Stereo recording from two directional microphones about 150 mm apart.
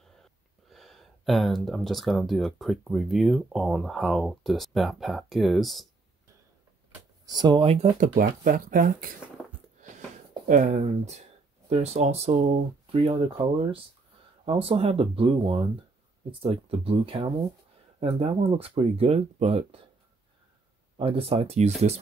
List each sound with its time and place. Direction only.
0.2 s speech: centre (ahead or behind)
7.2 s speech: 30° right (ahead or behind)
8.2 s speech: 70° right (ahead or behind)
10.5 s speech: 55° right (ahead or behind)
21.0 s speech: 40° right (ahead or behind)